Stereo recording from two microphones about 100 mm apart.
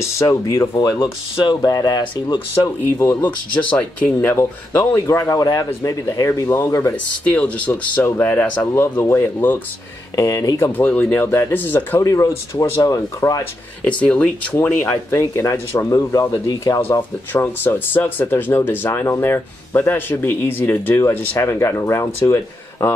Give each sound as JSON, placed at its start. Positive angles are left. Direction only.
{"t": 0.0, "sound": "speech", "side_deg": 30}
{"t": 0.7, "sound": "speech", "side_deg": 40}
{"t": 2.6, "sound": "speech", "side_deg": 25}
{"t": 4.3, "sound": "speech", "side_deg": 25}
{"t": 7.2, "sound": "speech", "side_deg": 15}
{"t": 10.1, "sound": "speech", "side_deg": 35}
{"t": 10.7, "sound": "speech", "side_deg": 20}
{"t": 12.0, "sound": "speech", "side_deg": 30}
{"t": 13.8, "sound": "speech", "side_deg": 15}
{"t": 17.3, "sound": "speech", "side_deg": 25}